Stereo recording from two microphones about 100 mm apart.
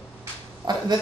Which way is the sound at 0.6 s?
45° right (ahead or behind).